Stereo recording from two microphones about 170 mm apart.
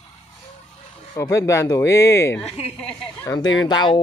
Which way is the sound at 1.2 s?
20° left (ahead or behind).